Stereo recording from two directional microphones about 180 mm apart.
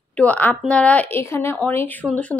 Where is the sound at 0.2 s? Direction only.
10° left (ahead or behind).